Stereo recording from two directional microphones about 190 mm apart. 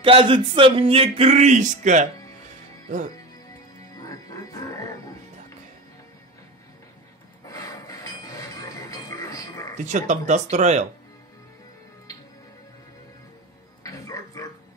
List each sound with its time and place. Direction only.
0.0 s speech: 25° right (ahead or behind)
4.0 s music: 15° left (ahead or behind)
7.4 s chink: 15° left (ahead or behind)
9.8 s speech: 40° right (ahead or behind)
13.8 s music: 15° left (ahead or behind)